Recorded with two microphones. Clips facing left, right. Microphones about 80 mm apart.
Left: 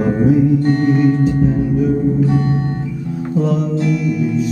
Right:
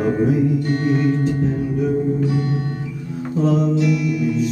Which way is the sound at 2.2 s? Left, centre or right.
Left.